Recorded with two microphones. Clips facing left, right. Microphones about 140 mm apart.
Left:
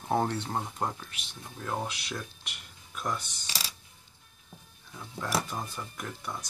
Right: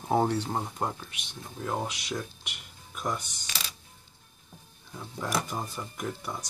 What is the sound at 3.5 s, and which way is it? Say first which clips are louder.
Mechanisms: even; 30° left (ahead or behind).